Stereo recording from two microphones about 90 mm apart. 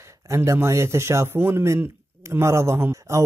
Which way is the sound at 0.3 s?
30° right (ahead or behind).